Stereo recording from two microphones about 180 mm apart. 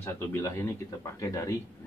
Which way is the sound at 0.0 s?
15° left (ahead or behind).